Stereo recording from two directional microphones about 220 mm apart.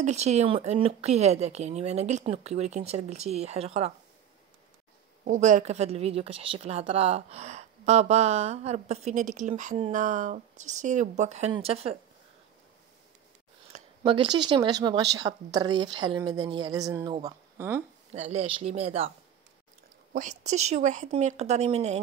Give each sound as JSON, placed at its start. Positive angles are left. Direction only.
{"t": 0.0, "sound": "speech", "side_deg": -30}
{"t": 5.2, "sound": "a woman's voice", "side_deg": -35}
{"t": 14.0, "sound": "speech", "side_deg": -25}
{"t": 18.1, "sound": "a woman's voice", "side_deg": -30}